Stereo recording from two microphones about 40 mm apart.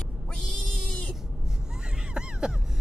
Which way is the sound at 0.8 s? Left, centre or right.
Left.